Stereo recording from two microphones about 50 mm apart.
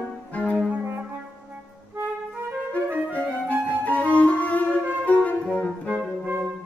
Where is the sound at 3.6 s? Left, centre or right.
Left.